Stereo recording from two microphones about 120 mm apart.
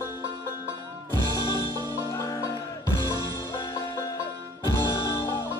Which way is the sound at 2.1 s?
25° left (ahead or behind).